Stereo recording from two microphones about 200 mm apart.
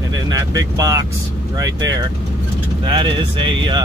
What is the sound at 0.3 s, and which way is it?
Speech, 15° right (ahead or behind).